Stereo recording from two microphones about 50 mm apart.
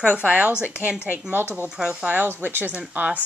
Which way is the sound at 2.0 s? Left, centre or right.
Right.